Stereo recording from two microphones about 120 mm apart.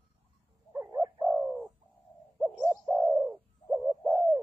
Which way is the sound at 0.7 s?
25° right (ahead or behind).